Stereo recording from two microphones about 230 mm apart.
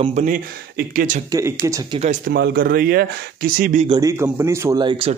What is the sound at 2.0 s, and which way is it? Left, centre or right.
Speech, right.